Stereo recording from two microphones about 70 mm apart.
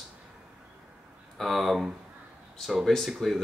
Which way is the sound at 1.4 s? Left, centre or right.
Centre.